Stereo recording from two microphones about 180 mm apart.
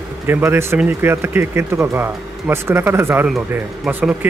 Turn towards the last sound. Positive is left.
turn(degrees=-10)  # may be behind; listen again after turning